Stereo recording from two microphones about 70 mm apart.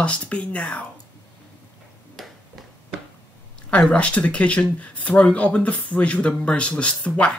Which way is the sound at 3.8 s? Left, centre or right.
Centre.